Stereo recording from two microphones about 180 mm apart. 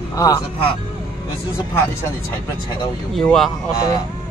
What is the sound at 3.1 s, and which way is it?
Speech, 5° left (ahead or behind).